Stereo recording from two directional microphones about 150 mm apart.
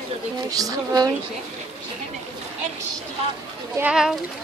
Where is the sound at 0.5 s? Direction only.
25° right (ahead or behind).